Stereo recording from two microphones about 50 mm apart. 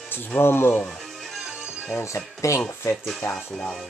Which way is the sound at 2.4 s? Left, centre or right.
Left.